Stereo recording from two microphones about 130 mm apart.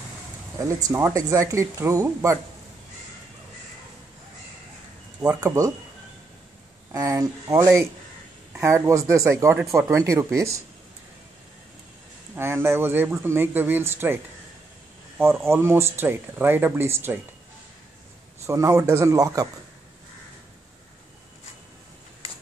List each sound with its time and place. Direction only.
0.6 s speech: 25° right (ahead or behind)
5.2 s speech: 20° right (ahead or behind)
6.9 s speech: 25° right (ahead or behind)
12.4 s speech: 20° right (ahead or behind)
18.5 s speech: 20° right (ahead or behind)